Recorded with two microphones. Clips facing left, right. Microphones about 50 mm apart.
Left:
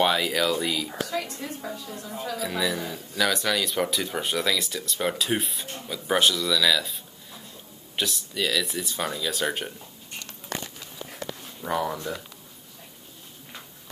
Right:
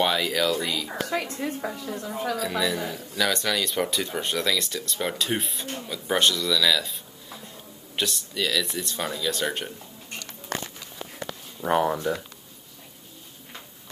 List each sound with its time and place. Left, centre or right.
0.0 s speech: centre
0.8 s a woman's voice: right
2.3 s speech: centre
11.0 s a sound: right